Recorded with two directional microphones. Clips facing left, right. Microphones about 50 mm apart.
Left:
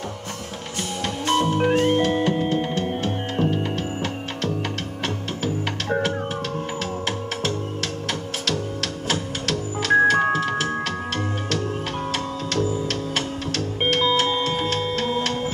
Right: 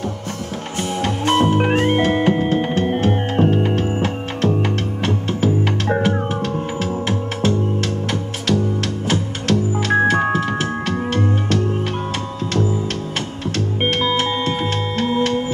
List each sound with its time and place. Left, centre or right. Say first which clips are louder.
0.7 s music: right 6 dB; right
5.9 s music: right 3 dB; centre
13.7 s music: right 1 dB; right